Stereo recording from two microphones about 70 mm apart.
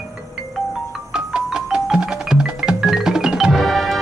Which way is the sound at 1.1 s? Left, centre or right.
Centre.